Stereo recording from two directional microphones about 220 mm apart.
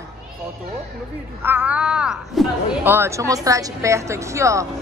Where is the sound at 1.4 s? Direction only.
10° right (ahead or behind).